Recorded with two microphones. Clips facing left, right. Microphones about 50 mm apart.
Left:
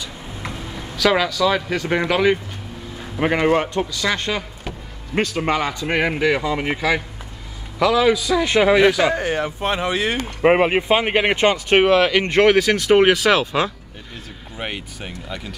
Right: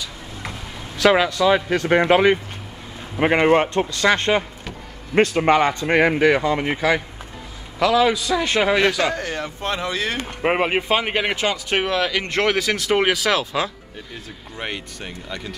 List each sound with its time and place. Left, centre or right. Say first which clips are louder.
1.0 s a man's voice: right 2 dB; right
3.2 s a man's voice: right 2 dB; right
3.7 s speech: right 3 dB; right
5.3 s speech: right 4 dB; centre
5.6 s speech: right 4 dB; right
7.8 s a man's voice: left 1 dB; centre
10.4 s a man's voice: left 5 dB; centre
11.3 s speech: left 6 dB; left
14.6 s a man's voice: left 1 dB; centre